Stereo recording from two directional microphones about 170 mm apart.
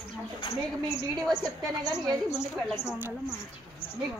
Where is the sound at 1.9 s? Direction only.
Centre (ahead or behind).